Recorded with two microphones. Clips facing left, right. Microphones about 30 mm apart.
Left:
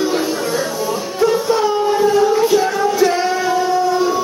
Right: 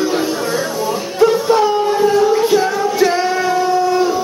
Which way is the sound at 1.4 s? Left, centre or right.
Centre.